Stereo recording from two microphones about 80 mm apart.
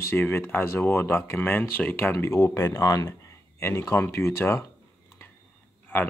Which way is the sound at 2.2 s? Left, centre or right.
Left.